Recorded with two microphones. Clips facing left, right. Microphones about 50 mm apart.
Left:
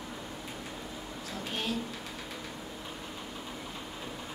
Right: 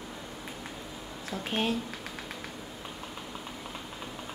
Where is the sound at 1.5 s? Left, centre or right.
Right.